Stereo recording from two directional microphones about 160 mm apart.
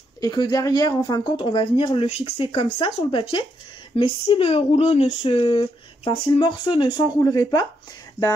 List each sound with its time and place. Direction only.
0.2 s speech: 25° left (ahead or behind)